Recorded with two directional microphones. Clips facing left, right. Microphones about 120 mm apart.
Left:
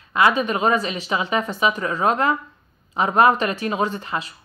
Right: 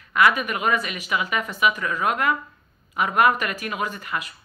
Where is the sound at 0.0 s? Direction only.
25° left (ahead or behind).